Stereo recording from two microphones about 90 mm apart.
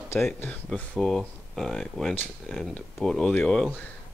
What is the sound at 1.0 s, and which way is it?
Speech, centre (ahead or behind).